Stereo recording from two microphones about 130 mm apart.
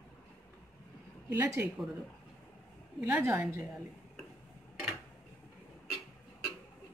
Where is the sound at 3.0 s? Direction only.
10° right (ahead or behind).